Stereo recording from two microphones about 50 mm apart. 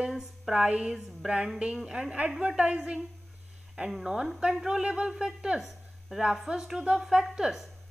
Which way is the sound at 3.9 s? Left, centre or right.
Centre.